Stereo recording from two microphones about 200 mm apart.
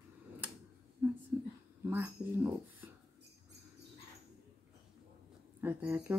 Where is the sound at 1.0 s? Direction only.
10° right (ahead or behind).